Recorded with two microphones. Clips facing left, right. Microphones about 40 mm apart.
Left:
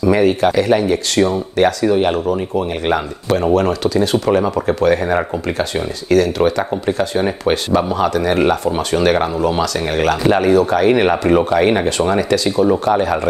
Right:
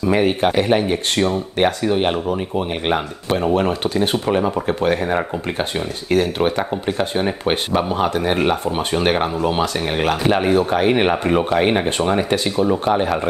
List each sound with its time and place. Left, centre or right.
0.0 s speech: right
2.0 s speech: right
3.8 s speech: right
4.4 s speech: centre
5.6 s speech: right